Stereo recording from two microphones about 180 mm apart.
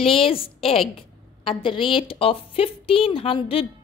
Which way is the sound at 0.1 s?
30° left (ahead or behind).